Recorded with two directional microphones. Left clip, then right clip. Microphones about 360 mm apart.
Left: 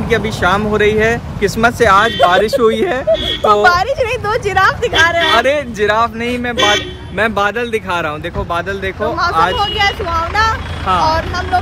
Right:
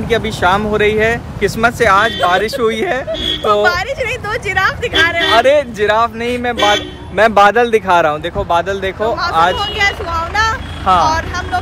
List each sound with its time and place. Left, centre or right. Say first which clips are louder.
0.1 s speech: right 1 dB; centre
3.6 s a woman's voice: left 3 dB; centre
5.3 s speech: right 2 dB; centre
6.5 s speech: even; right
7.2 s speech: right 6 dB; centre